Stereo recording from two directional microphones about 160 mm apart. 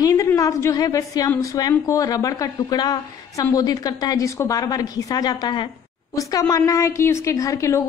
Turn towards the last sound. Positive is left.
turn(degrees=20)  # may be behind; listen again after turning